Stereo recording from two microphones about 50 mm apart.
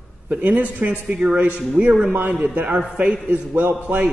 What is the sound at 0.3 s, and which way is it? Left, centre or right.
A man's voice, right.